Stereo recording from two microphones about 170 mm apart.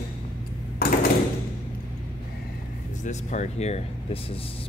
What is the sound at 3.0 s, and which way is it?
Speech, 45° left (ahead or behind).